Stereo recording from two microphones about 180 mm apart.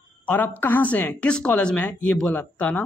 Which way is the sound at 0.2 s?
10° left (ahead or behind).